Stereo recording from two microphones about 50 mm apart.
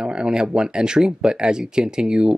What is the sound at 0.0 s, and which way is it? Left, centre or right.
Speech, centre.